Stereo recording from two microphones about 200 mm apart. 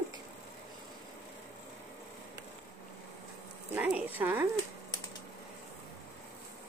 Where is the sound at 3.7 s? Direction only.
5° right (ahead or behind).